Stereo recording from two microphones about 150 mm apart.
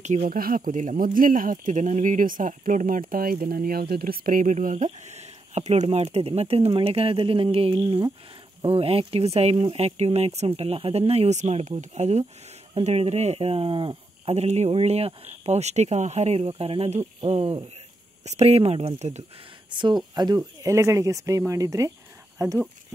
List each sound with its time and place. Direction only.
0.0 s speech: 60° right (ahead or behind)
19.7 s speech: 30° right (ahead or behind)